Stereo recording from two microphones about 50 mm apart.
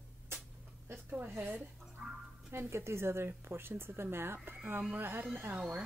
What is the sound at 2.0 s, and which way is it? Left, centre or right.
Music, right.